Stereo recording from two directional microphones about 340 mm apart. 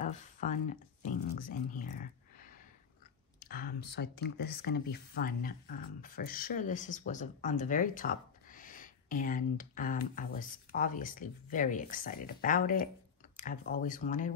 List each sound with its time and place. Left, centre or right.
0.0 s speech: left